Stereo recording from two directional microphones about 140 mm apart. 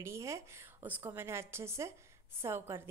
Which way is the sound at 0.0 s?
20° right (ahead or behind).